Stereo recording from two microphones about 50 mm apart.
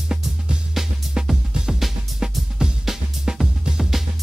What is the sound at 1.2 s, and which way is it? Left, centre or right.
Music, centre.